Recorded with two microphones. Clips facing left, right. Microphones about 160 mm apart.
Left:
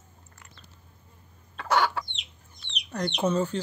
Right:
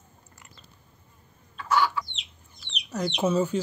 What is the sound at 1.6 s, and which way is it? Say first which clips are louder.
Chicken: even; 70° left (ahead or behind).